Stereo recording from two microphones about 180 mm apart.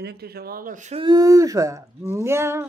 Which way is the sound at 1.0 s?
20° right (ahead or behind).